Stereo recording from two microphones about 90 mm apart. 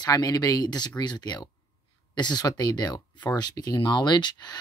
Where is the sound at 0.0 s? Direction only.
45° left (ahead or behind).